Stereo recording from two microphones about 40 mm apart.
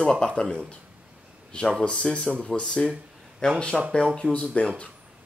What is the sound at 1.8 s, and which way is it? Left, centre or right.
Speech, left.